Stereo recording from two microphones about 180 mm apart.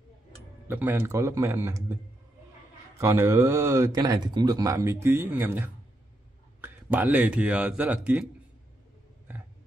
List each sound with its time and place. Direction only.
0.7 s speech: 10° right (ahead or behind)
3.0 s speech: 15° right (ahead or behind)